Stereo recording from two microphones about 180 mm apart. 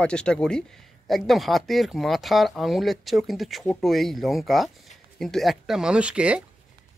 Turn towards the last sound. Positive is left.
turn(degrees=-5)  # may be behind; listen again after turning